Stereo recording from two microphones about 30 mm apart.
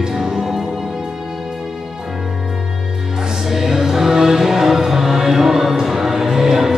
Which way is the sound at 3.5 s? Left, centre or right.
Centre.